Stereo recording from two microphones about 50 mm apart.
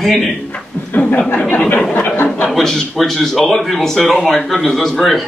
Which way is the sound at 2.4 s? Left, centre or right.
Centre.